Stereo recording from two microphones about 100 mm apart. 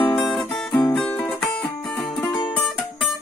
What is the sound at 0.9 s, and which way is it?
Music, 10° left (ahead or behind).